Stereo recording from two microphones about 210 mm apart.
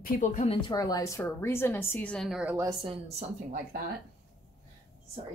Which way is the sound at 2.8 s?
25° right (ahead or behind).